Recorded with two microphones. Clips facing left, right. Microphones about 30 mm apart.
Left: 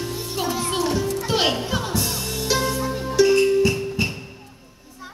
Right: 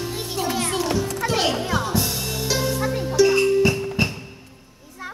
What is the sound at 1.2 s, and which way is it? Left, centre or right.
Music, centre.